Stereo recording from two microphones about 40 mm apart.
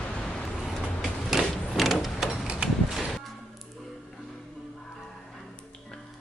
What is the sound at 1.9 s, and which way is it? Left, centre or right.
Vehicle, centre.